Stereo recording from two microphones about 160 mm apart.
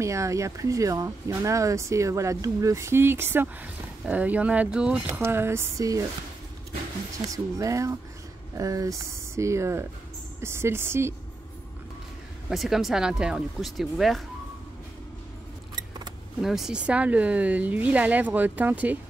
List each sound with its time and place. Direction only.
0.0 s speech: 20° right (ahead or behind)
7.5 s speech: 20° right (ahead or behind)
12.4 s speech: centre (ahead or behind)
16.3 s speech: centre (ahead or behind)